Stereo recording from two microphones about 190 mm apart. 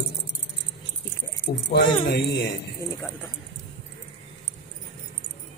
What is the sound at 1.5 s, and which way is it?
A man's voice, 55° left (ahead or behind).